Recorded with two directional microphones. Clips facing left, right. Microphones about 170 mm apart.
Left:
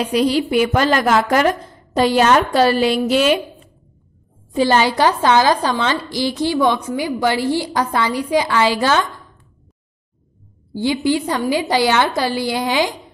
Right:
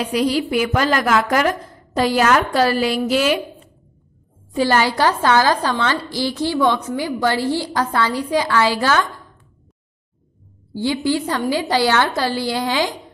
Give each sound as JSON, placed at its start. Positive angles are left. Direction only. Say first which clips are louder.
{"t": 0.0, "sound": "a woman's voice", "louder": "left 2 dB", "side_deg": 25}
{"t": 4.6, "sound": "a woman's voice", "louder": "left 2 dB", "side_deg": 20}
{"t": 10.7, "sound": "a woman's voice", "louder": "left 2 dB", "side_deg": 15}